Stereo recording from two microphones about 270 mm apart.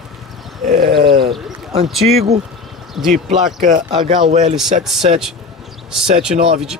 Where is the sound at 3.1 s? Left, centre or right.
Right.